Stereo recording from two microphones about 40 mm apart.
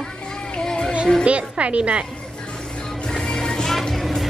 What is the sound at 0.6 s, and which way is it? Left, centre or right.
Music, centre.